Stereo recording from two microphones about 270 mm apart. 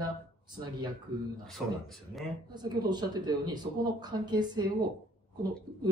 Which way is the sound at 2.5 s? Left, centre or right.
Centre.